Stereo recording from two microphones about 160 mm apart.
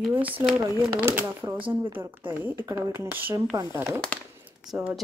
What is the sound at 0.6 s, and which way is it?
Speech, 15° right (ahead or behind).